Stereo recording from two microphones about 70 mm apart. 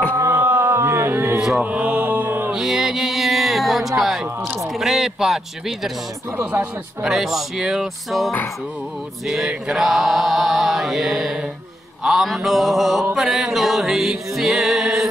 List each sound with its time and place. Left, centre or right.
0.2 s music: right
1.6 s mantra: right
2.5 s speech: centre
4.7 s chant: centre
6.4 s mantra: right
7.0 s chant: centre